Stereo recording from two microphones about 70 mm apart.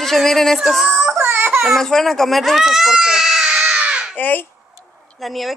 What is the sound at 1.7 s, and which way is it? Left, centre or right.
Speech, centre.